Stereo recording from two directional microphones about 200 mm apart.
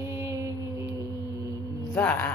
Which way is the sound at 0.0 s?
15° right (ahead or behind).